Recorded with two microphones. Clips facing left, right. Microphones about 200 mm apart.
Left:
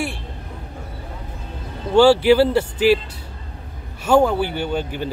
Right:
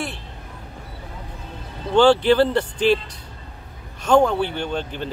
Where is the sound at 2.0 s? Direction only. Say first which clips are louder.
Left 2 dB; 10° left (ahead or behind).